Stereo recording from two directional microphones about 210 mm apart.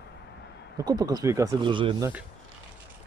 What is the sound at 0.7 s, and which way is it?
Speech, 20° right (ahead or behind).